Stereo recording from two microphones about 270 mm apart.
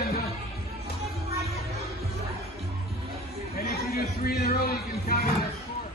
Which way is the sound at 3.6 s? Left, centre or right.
Left.